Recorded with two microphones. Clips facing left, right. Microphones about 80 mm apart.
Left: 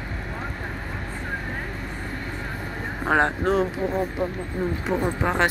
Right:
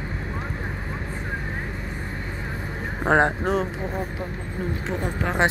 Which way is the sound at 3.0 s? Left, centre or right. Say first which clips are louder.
Right 2 dB; right.